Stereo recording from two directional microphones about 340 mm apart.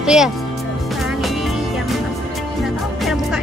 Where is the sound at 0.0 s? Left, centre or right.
Centre.